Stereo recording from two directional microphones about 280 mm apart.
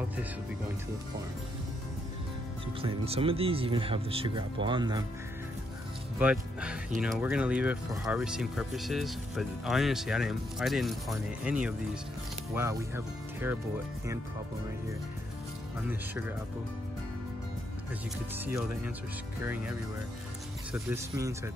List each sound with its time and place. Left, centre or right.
2.8 s speech: centre
6.1 s speech: centre
18.4 s speech: centre
20.7 s speech: centre